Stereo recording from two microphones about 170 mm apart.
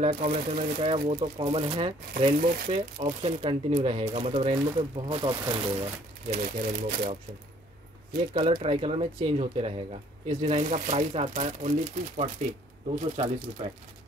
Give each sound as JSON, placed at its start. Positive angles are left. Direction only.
{"t": 0.0, "sound": "speech", "side_deg": -35}
{"t": 2.3, "sound": "speech", "side_deg": -60}
{"t": 2.7, "sound": "speech", "side_deg": -35}
{"t": 6.3, "sound": "speech", "side_deg": -50}
{"t": 8.3, "sound": "speech", "side_deg": -30}